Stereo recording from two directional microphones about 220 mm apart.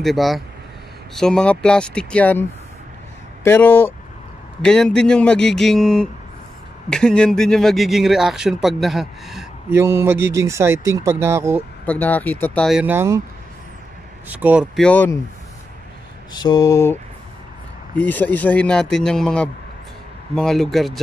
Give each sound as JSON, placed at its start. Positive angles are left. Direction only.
{"t": 0.0, "sound": "speech", "side_deg": 0}
{"t": 3.4, "sound": "speech", "side_deg": 10}
{"t": 11.8, "sound": "speech", "side_deg": 5}
{"t": 14.3, "sound": "speech", "side_deg": -5}
{"t": 16.4, "sound": "speech", "side_deg": 15}